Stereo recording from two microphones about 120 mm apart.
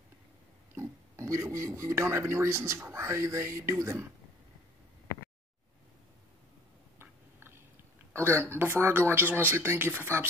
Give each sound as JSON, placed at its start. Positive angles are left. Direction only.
{"t": 0.7, "sound": "speech", "side_deg": -25}
{"t": 7.0, "sound": "a sound", "side_deg": -20}
{"t": 8.1, "sound": "speech", "side_deg": -20}